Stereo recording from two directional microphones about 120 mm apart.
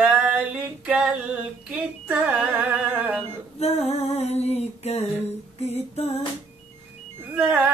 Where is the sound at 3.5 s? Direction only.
65° left (ahead or behind).